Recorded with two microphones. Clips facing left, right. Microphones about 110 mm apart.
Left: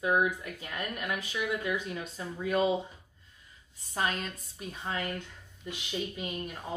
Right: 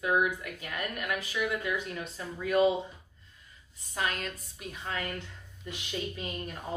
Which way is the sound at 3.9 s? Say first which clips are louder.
Left 1 dB; 30° left (ahead or behind).